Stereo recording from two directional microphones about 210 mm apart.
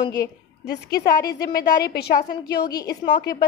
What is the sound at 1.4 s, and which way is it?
Speech, 45° left (ahead or behind).